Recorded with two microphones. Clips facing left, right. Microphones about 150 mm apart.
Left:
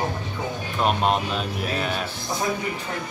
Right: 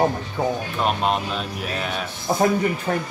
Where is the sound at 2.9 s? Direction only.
55° right (ahead or behind).